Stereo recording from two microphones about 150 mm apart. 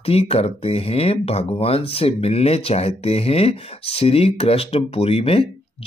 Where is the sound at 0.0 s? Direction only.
40° left (ahead or behind).